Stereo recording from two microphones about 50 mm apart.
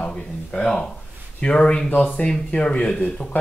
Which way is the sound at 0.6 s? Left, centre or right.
Centre.